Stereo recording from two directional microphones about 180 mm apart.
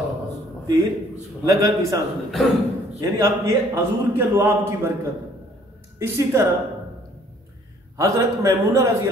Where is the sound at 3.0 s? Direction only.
15° right (ahead or behind).